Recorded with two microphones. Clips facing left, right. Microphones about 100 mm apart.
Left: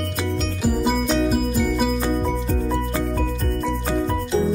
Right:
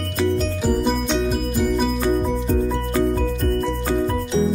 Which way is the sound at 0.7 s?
5° left (ahead or behind).